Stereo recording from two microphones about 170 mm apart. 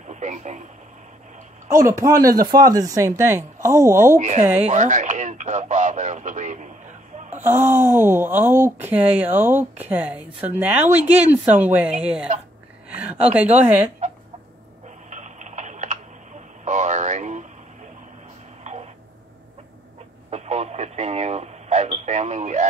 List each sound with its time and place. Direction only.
0.1 s speech: 45° right (ahead or behind)
1.9 s speech: 20° right (ahead or behind)
4.6 s speech: 45° right (ahead or behind)
7.3 s a woman's voice: 10° right (ahead or behind)
15.0 s typing: 45° right (ahead or behind)
16.6 s radio: 45° right (ahead or behind)
18.6 s throat clearing: 40° right (ahead or behind)
20.2 s radio: 40° right (ahead or behind)